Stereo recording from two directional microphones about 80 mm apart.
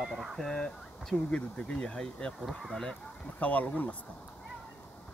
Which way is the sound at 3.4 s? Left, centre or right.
Centre.